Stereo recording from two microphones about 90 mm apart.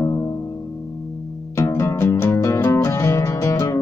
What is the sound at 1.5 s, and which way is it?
Music, 35° left (ahead or behind).